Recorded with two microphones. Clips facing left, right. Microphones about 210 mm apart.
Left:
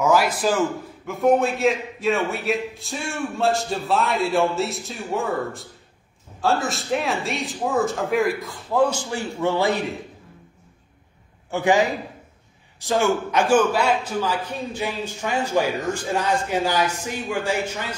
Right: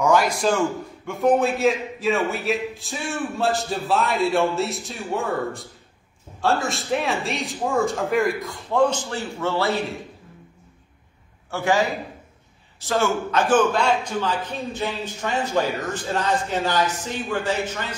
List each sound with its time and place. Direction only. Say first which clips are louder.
0.0 s a man's voice: even; 5° left (ahead or behind)
11.5 s a man's voice: left 2 dB; 15° left (ahead or behind)